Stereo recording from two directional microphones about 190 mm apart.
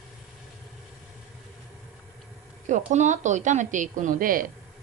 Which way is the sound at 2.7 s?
40° right (ahead or behind).